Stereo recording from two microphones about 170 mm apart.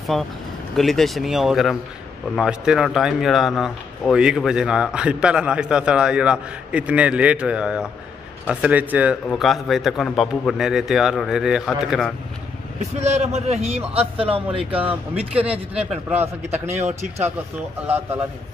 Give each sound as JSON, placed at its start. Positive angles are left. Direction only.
{"t": 0.1, "sound": "speech", "side_deg": 0}
{"t": 13.0, "sound": "a man's voice", "side_deg": -40}
{"t": 14.7, "sound": "speech", "side_deg": -10}
{"t": 16.4, "sound": "a man's voice", "side_deg": -40}